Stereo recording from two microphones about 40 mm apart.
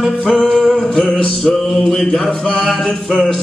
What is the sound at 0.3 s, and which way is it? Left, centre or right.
Music, centre.